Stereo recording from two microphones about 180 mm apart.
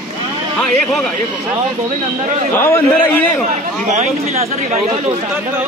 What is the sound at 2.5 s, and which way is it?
A man's voice, 10° left (ahead or behind).